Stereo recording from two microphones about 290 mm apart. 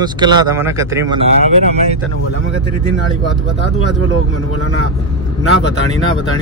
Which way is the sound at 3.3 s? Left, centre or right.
Left.